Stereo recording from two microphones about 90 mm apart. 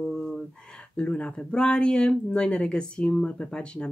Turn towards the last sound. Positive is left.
turn(degrees=10)  # may be behind; listen again after turning